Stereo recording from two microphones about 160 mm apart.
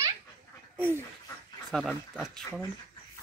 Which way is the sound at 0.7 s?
15° right (ahead or behind).